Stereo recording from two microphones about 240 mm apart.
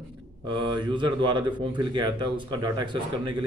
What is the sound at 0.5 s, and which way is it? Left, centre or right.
Speech, centre.